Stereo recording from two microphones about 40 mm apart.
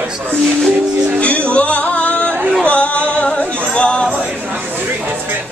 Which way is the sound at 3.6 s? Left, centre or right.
Left.